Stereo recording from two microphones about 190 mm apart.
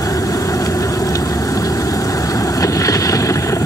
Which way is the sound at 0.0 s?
20° left (ahead or behind).